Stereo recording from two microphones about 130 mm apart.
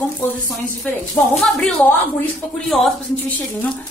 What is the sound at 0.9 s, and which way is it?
A woman's voice, 10° left (ahead or behind).